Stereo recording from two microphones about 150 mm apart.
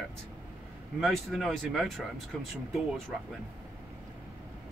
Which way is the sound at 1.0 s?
Centre (ahead or behind).